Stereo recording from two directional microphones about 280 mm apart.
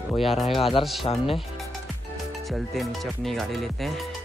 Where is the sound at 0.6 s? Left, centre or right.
Centre.